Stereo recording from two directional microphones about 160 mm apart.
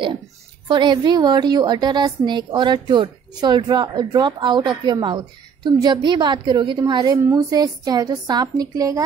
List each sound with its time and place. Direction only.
0.7 s a woman's voice: 30° right (ahead or behind)